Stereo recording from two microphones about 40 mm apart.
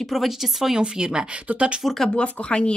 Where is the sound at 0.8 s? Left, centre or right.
Centre.